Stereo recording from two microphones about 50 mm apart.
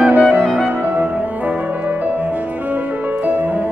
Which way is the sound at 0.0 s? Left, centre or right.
Right.